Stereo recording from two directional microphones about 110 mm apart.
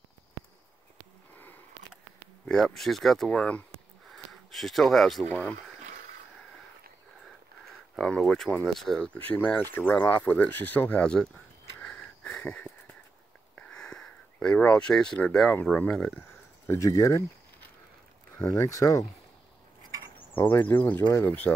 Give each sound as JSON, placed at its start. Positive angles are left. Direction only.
{"t": 2.4, "sound": "speech", "side_deg": 5}
{"t": 4.1, "sound": "a sound", "side_deg": 0}
{"t": 5.3, "sound": "speech", "side_deg": 20}
{"t": 7.9, "sound": "speech", "side_deg": 5}
{"t": 11.8, "sound": "wheeze", "side_deg": 10}
{"t": 13.6, "sound": "a sound", "side_deg": 5}
{"t": 15.5, "sound": "speech", "side_deg": 15}
{"t": 16.6, "sound": "speech", "side_deg": 25}
{"t": 18.5, "sound": "speech", "side_deg": 30}
{"t": 20.3, "sound": "speech", "side_deg": 15}
{"t": 21.1, "sound": "speech", "side_deg": 30}